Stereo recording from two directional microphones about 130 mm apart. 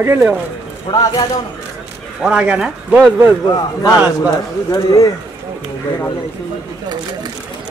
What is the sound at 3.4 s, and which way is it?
Speech, 30° left (ahead or behind).